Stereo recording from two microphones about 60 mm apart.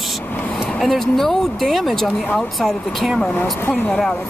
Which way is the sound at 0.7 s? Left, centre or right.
Centre.